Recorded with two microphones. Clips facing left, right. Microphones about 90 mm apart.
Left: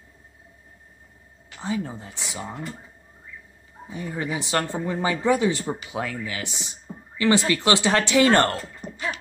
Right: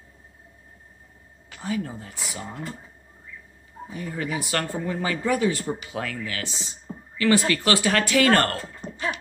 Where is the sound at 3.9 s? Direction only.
20° left (ahead or behind).